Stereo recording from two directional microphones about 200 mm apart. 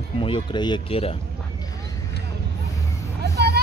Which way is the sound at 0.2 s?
25° left (ahead or behind).